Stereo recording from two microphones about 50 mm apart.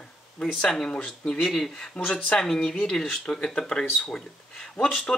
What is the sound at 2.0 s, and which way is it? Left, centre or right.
Speech, left.